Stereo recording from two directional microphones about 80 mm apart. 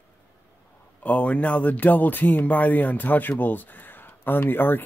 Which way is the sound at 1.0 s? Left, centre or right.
Centre.